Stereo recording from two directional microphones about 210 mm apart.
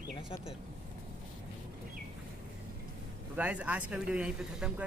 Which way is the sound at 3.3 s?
5° right (ahead or behind).